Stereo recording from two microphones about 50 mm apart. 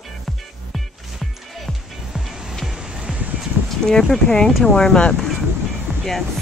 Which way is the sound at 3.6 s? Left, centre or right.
Centre.